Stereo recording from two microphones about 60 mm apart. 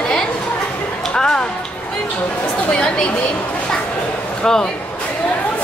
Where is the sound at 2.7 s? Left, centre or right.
Centre.